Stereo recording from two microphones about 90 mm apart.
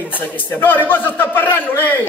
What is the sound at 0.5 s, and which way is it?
A man's voice, 20° left (ahead or behind).